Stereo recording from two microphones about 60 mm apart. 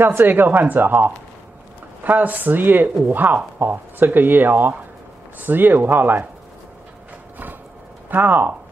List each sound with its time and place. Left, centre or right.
0.0 s speech: right
8.1 s speech: right